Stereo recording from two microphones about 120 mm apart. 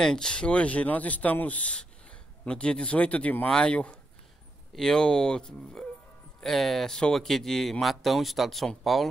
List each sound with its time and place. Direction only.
0.0 s speech: 5° left (ahead or behind)